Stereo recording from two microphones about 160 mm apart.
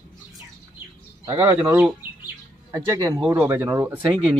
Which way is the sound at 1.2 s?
20° right (ahead or behind).